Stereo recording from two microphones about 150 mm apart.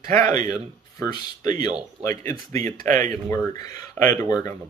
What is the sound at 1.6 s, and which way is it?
Speech, 25° left (ahead or behind).